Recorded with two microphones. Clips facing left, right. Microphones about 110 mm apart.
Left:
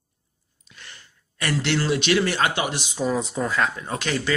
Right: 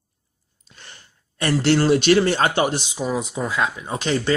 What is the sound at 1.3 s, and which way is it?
Speech, 35° right (ahead or behind).